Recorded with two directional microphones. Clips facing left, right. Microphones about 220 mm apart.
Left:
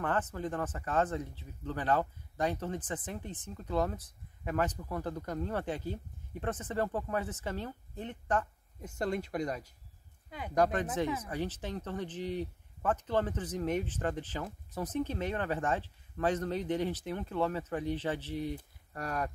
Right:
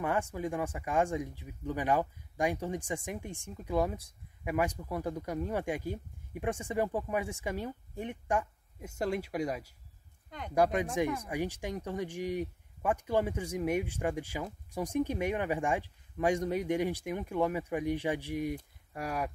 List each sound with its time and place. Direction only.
0.0 s speech: 10° right (ahead or behind)